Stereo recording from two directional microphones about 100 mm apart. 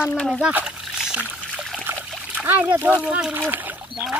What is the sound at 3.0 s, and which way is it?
Speech, 15° right (ahead or behind).